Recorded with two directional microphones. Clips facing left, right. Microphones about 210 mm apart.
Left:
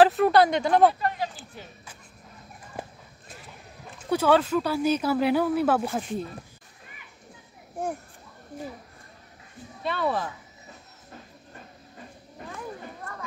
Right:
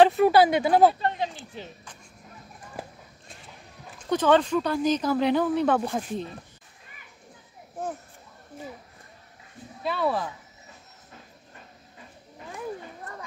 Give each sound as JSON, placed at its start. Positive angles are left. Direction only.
{"t": 0.0, "sound": "speech", "side_deg": 0}
{"t": 0.9, "sound": "speech", "side_deg": -25}
{"t": 4.0, "sound": "speech", "side_deg": 5}
{"t": 7.8, "sound": "speech", "side_deg": 10}
{"t": 9.8, "sound": "speech", "side_deg": 0}
{"t": 13.1, "sound": "clip-clop", "side_deg": -15}